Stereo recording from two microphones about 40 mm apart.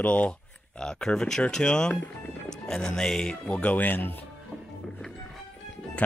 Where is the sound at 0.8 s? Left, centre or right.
Centre.